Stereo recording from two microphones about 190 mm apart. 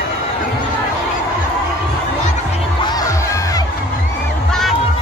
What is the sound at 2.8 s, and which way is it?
Crowd, 20° left (ahead or behind).